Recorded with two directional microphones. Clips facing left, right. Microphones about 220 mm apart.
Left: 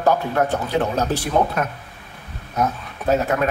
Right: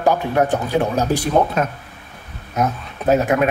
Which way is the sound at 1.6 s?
25° right (ahead or behind).